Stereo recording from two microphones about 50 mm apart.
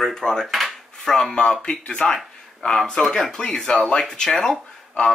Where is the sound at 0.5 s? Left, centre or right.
Centre.